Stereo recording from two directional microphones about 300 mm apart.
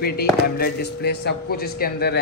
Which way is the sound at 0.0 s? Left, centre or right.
Left.